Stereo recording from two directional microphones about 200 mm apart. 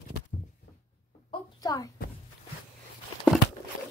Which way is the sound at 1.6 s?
20° left (ahead or behind).